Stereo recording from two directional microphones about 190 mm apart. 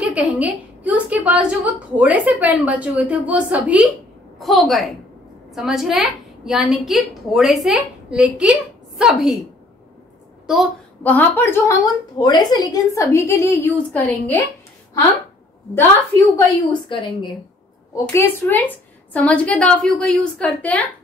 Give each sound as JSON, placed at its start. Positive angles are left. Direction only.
{"t": 0.0, "sound": "a woman's voice", "side_deg": -5}
{"t": 10.4, "sound": "a woman's voice", "side_deg": 0}
{"t": 11.1, "sound": "a woman's voice", "side_deg": 10}
{"t": 16.3, "sound": "a woman's voice", "side_deg": 20}
{"t": 18.1, "sound": "a woman's voice", "side_deg": 10}